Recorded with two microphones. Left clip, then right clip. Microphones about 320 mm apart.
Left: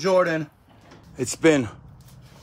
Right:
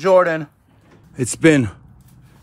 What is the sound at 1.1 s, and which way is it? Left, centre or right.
Speech, right.